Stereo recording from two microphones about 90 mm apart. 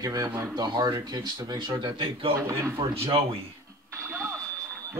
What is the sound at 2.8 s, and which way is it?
Speech, 90° right.